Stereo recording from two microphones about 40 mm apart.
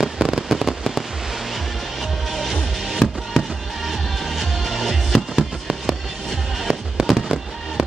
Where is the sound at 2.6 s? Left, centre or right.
Centre.